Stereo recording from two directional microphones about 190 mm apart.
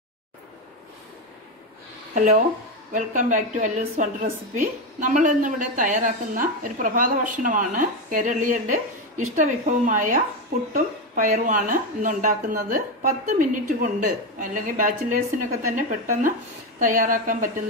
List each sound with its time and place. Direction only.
2.1 s a woman's voice: 40° right (ahead or behind)